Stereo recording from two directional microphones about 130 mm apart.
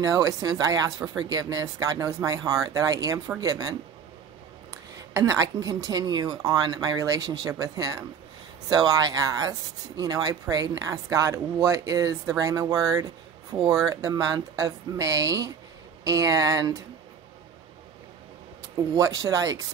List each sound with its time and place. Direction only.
0.0 s speech: 25° right (ahead or behind)
5.1 s speech: 25° right (ahead or behind)
18.9 s speech: 25° right (ahead or behind)